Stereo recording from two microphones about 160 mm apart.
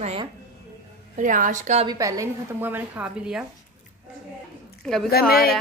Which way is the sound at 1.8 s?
20° right (ahead or behind).